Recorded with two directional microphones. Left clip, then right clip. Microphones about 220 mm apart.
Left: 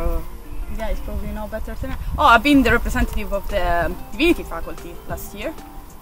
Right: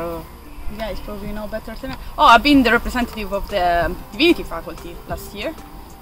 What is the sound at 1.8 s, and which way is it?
Speech, 15° left (ahead or behind).